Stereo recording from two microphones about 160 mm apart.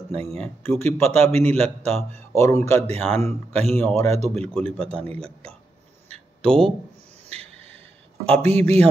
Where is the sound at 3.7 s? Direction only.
15° left (ahead or behind).